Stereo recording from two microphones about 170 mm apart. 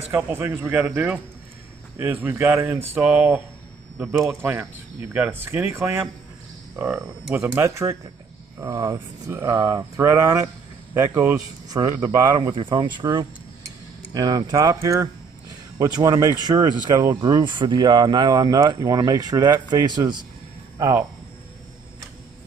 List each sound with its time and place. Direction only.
0.1 s speech: 10° right (ahead or behind)